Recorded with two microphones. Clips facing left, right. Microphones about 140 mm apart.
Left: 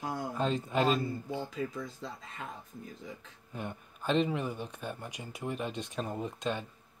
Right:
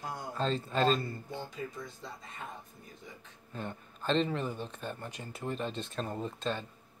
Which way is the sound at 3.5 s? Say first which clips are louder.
Even; 10° left (ahead or behind).